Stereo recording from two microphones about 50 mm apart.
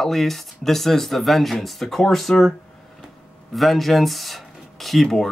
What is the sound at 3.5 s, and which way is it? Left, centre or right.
Speech, centre.